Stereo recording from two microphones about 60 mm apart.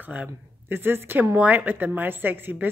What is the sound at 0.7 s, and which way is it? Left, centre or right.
A woman's voice, right.